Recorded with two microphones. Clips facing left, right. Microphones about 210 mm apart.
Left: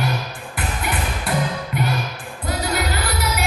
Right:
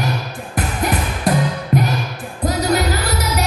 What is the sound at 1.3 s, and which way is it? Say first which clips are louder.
Music: right 7 dB; 40° right (ahead or behind).